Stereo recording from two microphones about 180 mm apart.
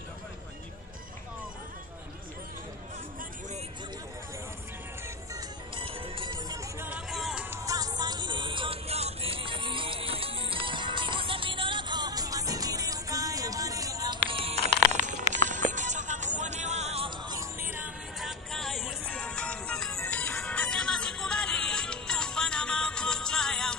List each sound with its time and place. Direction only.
5.8 s music: 30° right (ahead or behind)
6.8 s music: 5° right (ahead or behind)
7.5 s vehicle: 20° right (ahead or behind)
14.3 s music: 35° right (ahead or behind)
17.3 s music: 15° right (ahead or behind); by 23.8 s 5° left (ahead or behind)